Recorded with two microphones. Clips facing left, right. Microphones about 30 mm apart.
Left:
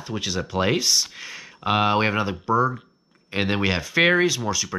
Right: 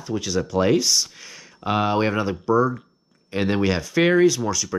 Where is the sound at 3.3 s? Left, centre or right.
Left.